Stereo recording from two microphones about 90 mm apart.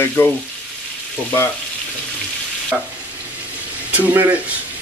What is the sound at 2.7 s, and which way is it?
Speech, 5° right (ahead or behind).